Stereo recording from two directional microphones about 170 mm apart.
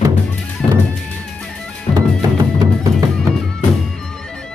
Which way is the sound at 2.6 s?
20° right (ahead or behind).